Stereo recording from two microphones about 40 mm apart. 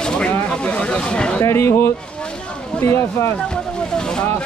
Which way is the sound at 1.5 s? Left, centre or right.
Left.